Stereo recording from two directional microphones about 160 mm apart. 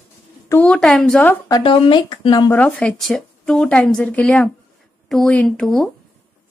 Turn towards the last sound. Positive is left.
turn(degrees=5)  # may be behind; listen again after turning